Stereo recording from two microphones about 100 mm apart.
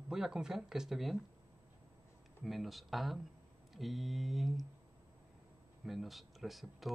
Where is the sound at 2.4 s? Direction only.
Centre (ahead or behind).